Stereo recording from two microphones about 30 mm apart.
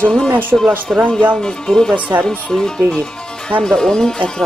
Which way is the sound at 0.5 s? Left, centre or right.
Right.